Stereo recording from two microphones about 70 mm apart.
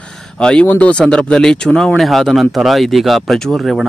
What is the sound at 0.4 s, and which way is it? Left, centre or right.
Speech, centre.